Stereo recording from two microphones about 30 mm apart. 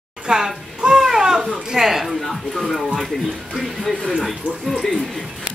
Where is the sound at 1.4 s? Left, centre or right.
Right.